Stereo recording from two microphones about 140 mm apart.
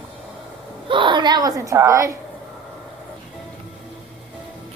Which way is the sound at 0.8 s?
35° right (ahead or behind).